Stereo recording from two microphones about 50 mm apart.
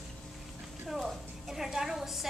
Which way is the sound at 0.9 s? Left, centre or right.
Centre.